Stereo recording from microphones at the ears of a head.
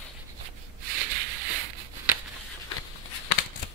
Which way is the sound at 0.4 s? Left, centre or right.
Right.